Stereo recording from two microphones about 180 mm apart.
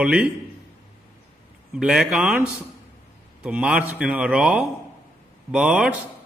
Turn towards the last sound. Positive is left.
turn(degrees=-5)  # may be behind; listen again after turning